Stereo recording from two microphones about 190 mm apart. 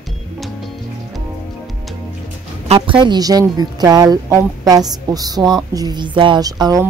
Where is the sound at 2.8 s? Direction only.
25° right (ahead or behind).